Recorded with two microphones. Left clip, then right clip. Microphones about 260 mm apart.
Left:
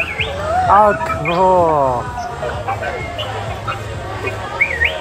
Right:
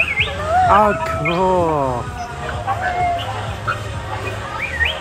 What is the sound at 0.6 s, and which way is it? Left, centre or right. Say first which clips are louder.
Speech: left 3 dB; right.